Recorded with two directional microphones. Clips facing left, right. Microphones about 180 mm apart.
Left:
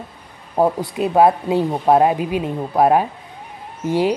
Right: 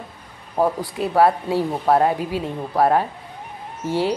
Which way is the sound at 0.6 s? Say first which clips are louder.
Left 3 dB; 20° left (ahead or behind).